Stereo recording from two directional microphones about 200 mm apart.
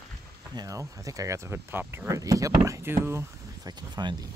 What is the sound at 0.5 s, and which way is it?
Speech, 15° right (ahead or behind).